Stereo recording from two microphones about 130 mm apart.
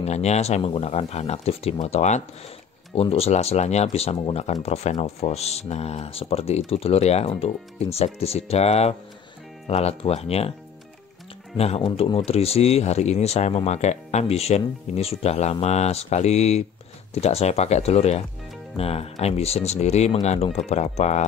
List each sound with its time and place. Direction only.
0.0 s speech: 60° left (ahead or behind)
2.9 s speech: 50° left (ahead or behind)
11.5 s speech: 50° left (ahead or behind)